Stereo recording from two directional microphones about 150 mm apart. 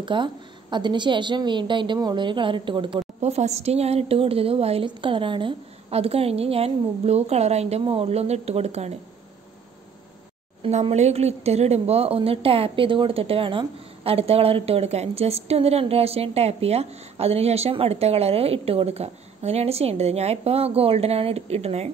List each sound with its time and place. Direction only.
0.0 s a woman's voice: 30° right (ahead or behind)
10.6 s speech: 45° right (ahead or behind)